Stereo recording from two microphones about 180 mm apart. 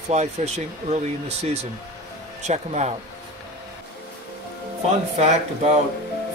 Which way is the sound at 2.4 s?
40° right (ahead or behind).